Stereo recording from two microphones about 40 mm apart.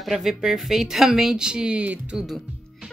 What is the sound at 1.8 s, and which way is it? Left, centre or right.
Speech, right.